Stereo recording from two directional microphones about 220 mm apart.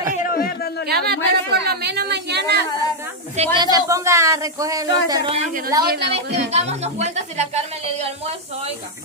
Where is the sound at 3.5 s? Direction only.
15° right (ahead or behind).